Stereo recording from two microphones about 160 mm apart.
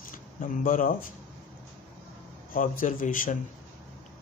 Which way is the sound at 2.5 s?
60° left (ahead or behind).